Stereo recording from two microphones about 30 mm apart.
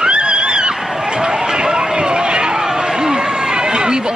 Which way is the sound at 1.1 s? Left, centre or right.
Right.